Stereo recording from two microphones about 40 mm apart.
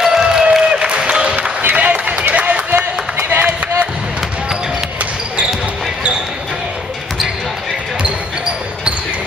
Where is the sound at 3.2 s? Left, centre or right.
Right.